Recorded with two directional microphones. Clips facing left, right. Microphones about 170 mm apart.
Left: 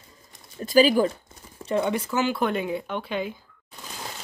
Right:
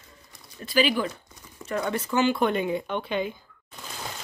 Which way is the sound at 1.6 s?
30° left (ahead or behind).